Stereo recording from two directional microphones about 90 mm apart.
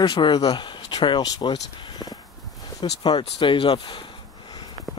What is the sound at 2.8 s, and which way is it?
Speech, 65° left (ahead or behind).